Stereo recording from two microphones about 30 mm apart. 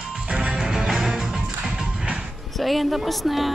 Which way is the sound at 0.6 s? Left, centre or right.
Centre.